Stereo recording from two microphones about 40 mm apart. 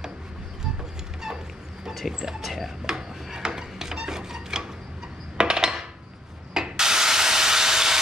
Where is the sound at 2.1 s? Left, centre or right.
Centre.